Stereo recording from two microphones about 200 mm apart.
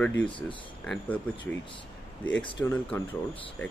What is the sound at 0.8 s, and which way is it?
Speech, 5° left (ahead or behind).